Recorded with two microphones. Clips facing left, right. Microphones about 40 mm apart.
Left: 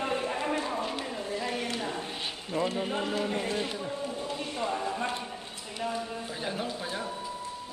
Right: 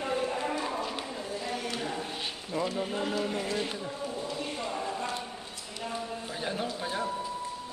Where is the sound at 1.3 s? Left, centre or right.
Left.